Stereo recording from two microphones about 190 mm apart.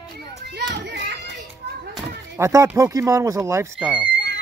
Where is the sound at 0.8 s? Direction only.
65° right (ahead or behind).